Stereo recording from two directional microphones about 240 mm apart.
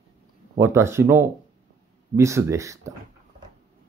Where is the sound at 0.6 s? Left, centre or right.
Centre.